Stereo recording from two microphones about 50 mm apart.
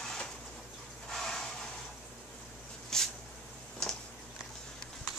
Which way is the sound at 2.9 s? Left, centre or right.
Centre.